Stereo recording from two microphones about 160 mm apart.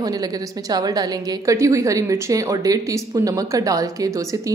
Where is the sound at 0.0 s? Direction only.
25° right (ahead or behind).